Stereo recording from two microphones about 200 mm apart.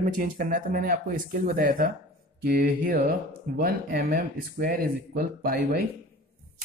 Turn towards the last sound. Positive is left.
turn(degrees=-50)  # may be behind; listen again after turning